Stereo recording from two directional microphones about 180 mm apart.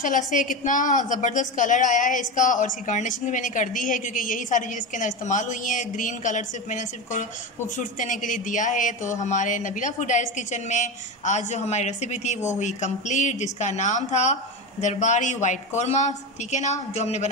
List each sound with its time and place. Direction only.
0.0 s a woman's voice: 45° left (ahead or behind)